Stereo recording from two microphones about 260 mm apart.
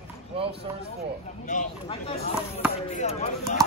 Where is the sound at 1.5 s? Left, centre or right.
Left.